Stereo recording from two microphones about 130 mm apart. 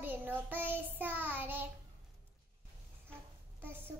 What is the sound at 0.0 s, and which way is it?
Child singing, 15° right (ahead or behind).